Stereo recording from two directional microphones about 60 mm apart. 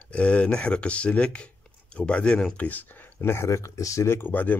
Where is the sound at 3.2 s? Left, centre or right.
Left.